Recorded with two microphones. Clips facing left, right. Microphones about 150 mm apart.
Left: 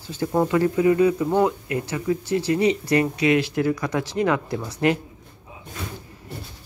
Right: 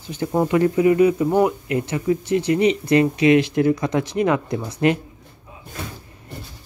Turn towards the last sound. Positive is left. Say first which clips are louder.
# right 2 dB
turn(degrees=-20)  # may be behind; listen again after turning